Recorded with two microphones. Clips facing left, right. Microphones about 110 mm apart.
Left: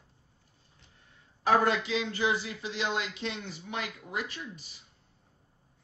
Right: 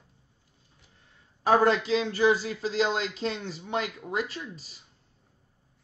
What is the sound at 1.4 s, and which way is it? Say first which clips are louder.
A man's voice: right 3 dB; 30° right (ahead or behind).